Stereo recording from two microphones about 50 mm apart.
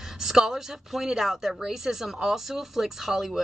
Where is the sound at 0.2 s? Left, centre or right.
Centre.